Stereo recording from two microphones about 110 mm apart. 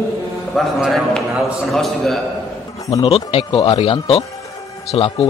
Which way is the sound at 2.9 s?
60° left (ahead or behind).